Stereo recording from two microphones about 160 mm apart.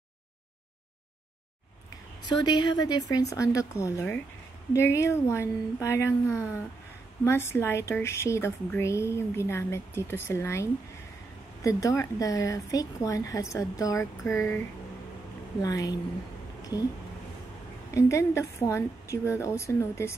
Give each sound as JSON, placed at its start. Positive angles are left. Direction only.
{"t": 2.2, "sound": "a woman's voice", "side_deg": 25}
{"t": 15.6, "sound": "a woman's voice", "side_deg": 20}
{"t": 17.9, "sound": "a woman's voice", "side_deg": 15}